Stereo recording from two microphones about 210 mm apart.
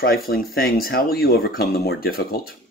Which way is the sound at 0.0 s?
45° left (ahead or behind).